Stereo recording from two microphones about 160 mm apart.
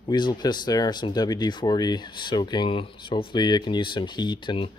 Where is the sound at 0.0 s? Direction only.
25° left (ahead or behind).